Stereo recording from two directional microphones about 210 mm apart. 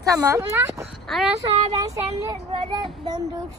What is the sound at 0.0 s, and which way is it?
Speech, 15° right (ahead or behind).